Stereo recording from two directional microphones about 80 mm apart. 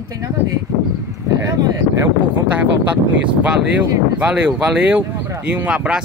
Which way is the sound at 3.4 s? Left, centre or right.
Centre.